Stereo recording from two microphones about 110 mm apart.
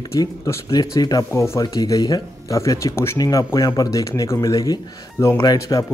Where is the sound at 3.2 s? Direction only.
35° left (ahead or behind).